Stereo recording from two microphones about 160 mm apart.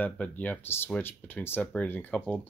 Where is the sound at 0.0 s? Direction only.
10° left (ahead or behind).